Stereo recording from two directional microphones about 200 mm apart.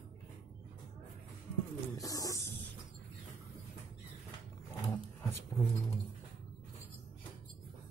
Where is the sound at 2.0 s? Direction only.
15° left (ahead or behind).